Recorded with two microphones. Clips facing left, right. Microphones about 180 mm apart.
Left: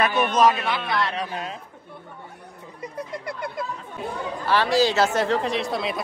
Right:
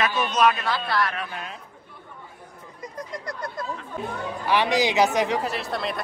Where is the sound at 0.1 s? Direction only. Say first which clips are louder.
Left 4 dB; 60° left (ahead or behind).